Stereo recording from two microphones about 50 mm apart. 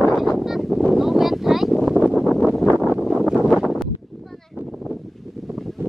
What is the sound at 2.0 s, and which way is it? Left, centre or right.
Wind noise, right.